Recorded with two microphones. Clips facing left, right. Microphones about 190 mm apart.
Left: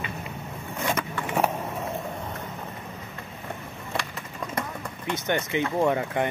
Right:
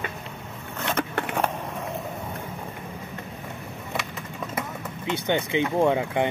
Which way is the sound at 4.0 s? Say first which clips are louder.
Even; 5° right (ahead or behind).